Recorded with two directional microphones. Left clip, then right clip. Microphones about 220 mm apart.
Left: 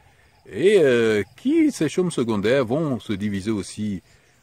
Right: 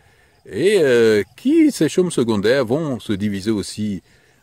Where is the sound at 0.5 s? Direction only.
35° right (ahead or behind).